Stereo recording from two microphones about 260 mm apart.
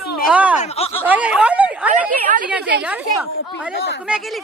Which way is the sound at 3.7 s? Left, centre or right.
Left.